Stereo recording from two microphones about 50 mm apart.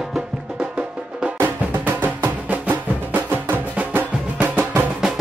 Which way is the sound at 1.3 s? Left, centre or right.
Right.